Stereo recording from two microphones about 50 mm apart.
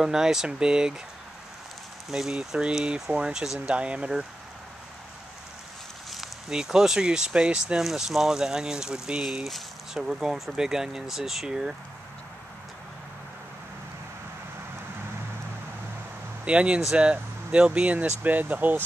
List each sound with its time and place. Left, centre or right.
0.0 s speech: centre
2.0 s speech: centre
2.8 s speech: right
6.0 s a sound: centre
6.5 s speech: centre
9.4 s speech: centre
16.4 s speech: right